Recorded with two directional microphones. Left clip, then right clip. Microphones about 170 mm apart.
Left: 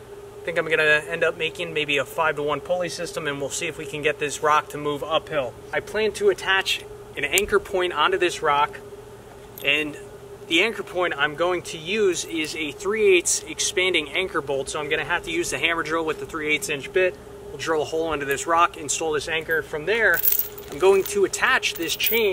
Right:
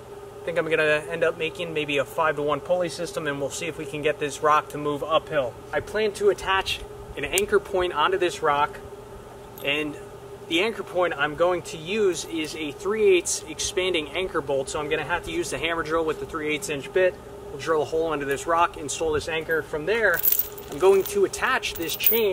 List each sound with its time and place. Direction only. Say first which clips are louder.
0.5 s a man's voice: left 2 dB; 5° left (ahead or behind)